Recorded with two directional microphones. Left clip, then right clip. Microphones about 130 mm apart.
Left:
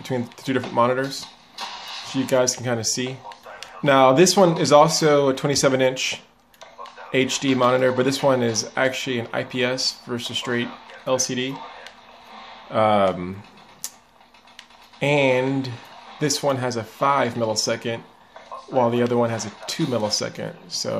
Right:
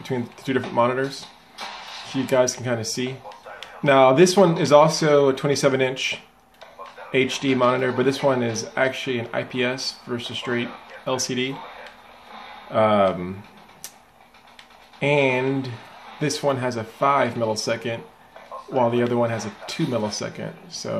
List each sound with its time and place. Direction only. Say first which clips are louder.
0.0 s speech: left 1 dB; 25° left (ahead or behind)
12.7 s speech: even; 25° left (ahead or behind)
15.0 s speech: left 1 dB; 25° left (ahead or behind)